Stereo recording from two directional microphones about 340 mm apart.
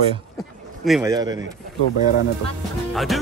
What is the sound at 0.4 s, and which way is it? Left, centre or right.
A man's voice, centre.